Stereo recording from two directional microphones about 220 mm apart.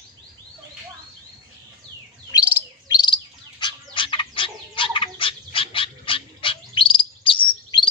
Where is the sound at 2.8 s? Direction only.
20° left (ahead or behind).